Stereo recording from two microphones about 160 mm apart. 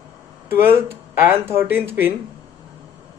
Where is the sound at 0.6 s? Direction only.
15° right (ahead or behind).